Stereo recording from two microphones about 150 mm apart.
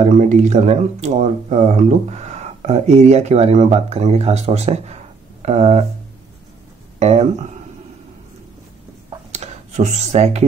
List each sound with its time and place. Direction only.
0.0 s speech: 55° right (ahead or behind)
7.0 s speech: 50° right (ahead or behind)
9.3 s a sound: 50° right (ahead or behind)